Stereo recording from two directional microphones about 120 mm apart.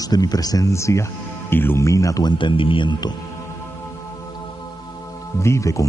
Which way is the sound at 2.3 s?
45° left (ahead or behind).